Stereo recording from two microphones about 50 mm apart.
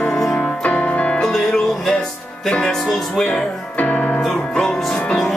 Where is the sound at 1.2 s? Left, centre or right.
Centre.